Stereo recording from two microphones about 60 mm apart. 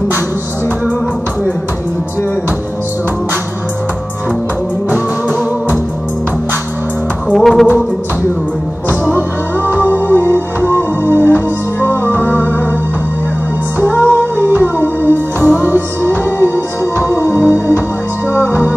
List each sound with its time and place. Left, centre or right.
7.3 s music: centre
9.8 s music: left
13.8 s music: left
14.1 s music: right
14.6 s music: left
15.4 s music: right
16.3 s music: left